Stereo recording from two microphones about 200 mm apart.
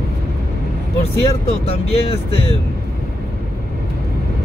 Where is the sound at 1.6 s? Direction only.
30° left (ahead or behind).